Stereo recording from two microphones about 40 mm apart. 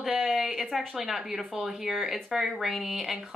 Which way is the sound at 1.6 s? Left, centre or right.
Centre.